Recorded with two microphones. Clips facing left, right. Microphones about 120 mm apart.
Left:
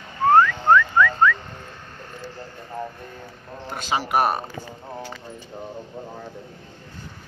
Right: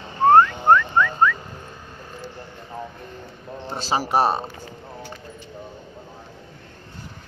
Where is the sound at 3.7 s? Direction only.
35° right (ahead or behind).